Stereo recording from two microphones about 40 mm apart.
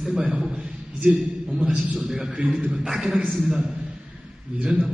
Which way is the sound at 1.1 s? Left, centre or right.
Centre.